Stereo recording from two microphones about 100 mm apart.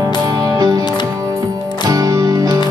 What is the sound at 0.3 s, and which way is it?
Music, 40° right (ahead or behind).